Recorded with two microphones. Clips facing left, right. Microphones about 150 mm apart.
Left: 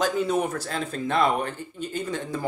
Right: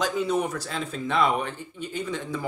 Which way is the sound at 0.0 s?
50° left (ahead or behind).